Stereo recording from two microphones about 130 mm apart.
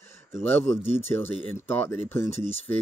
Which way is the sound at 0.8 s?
15° left (ahead or behind).